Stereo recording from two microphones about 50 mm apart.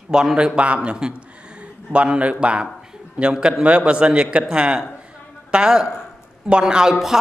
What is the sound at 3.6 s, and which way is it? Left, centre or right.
A man's voice, right.